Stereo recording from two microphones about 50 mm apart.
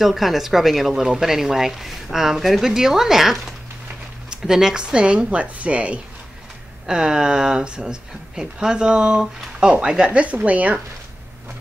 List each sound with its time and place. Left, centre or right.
0.0 s a woman's voice: centre; by 5.9 s right
6.9 s a woman's voice: centre